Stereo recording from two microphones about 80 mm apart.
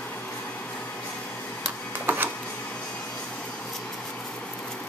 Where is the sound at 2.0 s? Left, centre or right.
Right.